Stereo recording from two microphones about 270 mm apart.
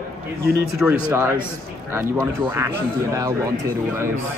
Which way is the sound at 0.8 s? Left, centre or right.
Centre.